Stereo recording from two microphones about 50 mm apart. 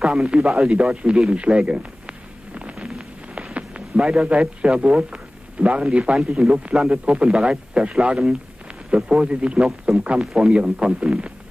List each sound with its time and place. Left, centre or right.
0.0 s a man's voice: centre
1.3 s a man's voice: right
1.7 s a sound: right
4.0 s a man's voice: centre
9.6 s a man's voice: centre
9.9 s a man's voice: right